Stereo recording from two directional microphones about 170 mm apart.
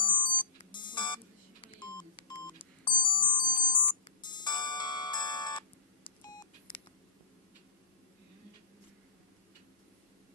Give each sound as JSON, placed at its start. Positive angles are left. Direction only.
{"t": 0.2, "sound": "beep", "side_deg": 25}